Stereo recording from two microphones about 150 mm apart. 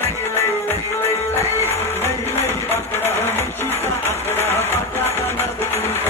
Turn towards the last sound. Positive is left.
turn(degrees=15)  # may be behind; listen again after turning